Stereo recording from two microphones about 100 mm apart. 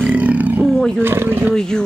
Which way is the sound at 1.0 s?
20° right (ahead or behind).